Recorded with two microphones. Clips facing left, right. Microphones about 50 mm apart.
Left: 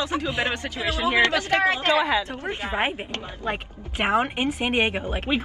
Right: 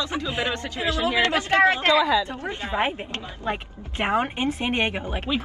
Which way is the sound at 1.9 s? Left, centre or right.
Left.